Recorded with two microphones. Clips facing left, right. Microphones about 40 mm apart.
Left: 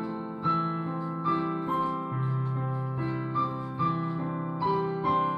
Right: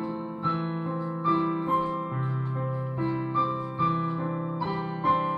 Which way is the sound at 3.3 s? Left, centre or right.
Right.